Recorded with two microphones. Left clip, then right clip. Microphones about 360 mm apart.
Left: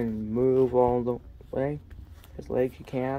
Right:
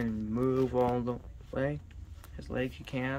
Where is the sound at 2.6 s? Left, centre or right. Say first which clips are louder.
Left 7 dB; right.